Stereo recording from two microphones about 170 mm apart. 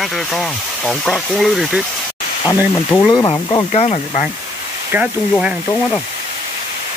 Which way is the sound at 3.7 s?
35° left (ahead or behind).